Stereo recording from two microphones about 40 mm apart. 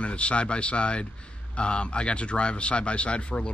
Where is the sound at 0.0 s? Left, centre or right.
Left.